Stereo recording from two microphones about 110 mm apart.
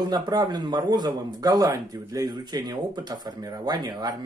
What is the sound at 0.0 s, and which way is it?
A man's voice, 40° right (ahead or behind).